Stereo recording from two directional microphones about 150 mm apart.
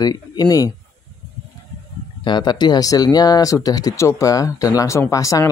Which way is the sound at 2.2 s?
30° left (ahead or behind).